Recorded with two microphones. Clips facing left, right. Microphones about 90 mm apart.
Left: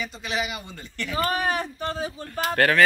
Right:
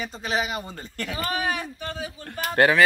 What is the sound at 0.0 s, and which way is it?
Speech, 40° right (ahead or behind).